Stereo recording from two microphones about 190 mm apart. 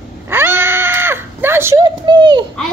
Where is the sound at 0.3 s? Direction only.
10° right (ahead or behind).